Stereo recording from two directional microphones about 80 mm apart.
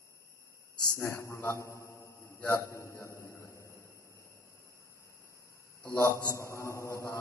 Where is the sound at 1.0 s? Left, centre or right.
Left.